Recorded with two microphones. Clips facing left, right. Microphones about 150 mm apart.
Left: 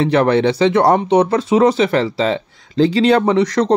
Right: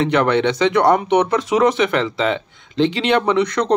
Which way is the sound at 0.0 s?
30° left (ahead or behind).